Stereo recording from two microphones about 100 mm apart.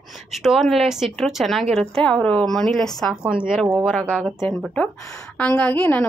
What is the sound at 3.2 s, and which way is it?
Speech, 10° right (ahead or behind).